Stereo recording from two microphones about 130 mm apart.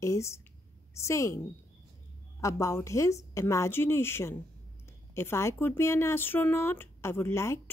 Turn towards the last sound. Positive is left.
turn(degrees=20)  # may be behind; listen again after turning